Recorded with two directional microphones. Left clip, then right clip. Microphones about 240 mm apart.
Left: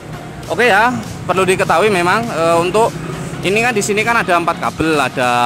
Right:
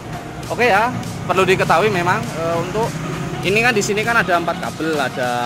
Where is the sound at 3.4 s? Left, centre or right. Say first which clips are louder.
Left 1 dB; centre.